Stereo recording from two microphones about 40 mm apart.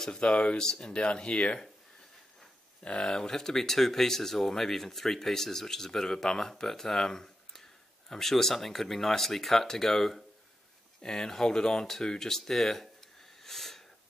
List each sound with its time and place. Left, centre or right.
0.2 s speech: left
2.8 s speech: left; by 12.9 s centre
13.4 s wheeze: centre